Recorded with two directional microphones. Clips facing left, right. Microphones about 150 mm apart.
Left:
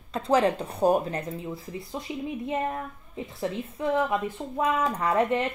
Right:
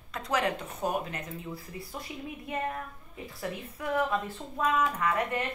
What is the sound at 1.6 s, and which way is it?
A woman's voice, 20° left (ahead or behind).